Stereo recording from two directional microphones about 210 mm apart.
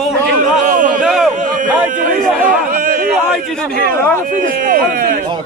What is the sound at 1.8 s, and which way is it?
Speech, 40° right (ahead or behind).